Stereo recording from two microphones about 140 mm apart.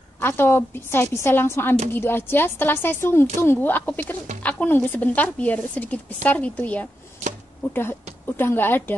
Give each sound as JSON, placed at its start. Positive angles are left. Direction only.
{"t": 0.2, "sound": "speech", "side_deg": 15}
{"t": 8.4, "sound": "speech", "side_deg": 15}